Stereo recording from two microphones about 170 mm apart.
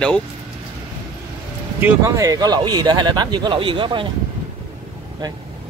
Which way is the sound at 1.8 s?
15° right (ahead or behind).